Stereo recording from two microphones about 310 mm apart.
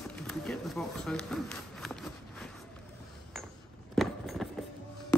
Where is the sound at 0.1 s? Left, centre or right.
Centre.